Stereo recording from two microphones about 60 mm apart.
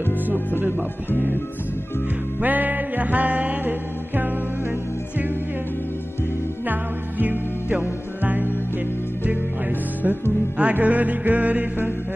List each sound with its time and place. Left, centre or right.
2.4 s music: right
6.6 s music: right